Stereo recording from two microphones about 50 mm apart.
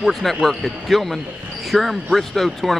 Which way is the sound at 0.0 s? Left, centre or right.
Centre.